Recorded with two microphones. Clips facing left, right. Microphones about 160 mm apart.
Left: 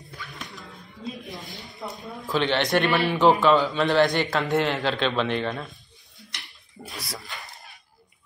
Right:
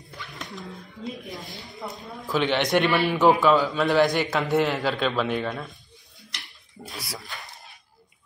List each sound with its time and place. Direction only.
0.3 s dog: centre (ahead or behind)
1.1 s a man's voice: centre (ahead or behind)
2.4 s a man's voice: 15° right (ahead or behind)
6.4 s a sound: centre (ahead or behind)